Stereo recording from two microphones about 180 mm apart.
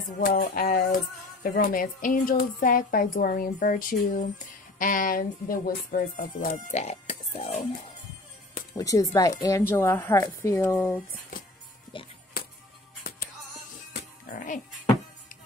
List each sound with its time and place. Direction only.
0.2 s speech: 55° left (ahead or behind); by 7.6 s 35° left (ahead or behind)
8.7 s a woman's voice: 20° left (ahead or behind)
11.9 s music: 30° left (ahead or behind)
14.3 s speech: 45° left (ahead or behind)